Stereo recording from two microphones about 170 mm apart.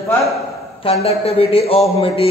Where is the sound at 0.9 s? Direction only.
35° left (ahead or behind).